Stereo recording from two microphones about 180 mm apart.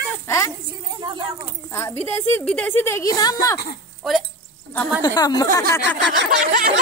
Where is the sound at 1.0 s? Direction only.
25° right (ahead or behind).